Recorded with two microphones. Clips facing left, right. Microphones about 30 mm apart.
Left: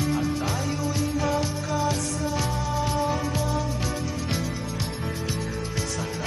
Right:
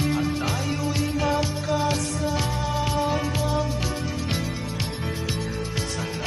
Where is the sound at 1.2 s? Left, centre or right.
Right.